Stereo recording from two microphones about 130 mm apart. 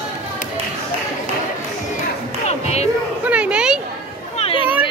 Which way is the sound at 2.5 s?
55° left (ahead or behind).